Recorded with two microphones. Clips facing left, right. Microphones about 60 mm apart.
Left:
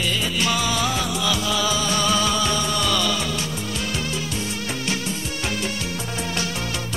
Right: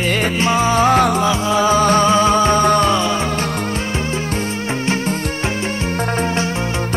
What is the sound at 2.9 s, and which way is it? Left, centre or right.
Music, right.